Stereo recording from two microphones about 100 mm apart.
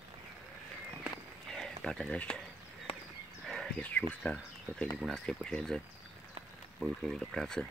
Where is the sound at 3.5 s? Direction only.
10° left (ahead or behind).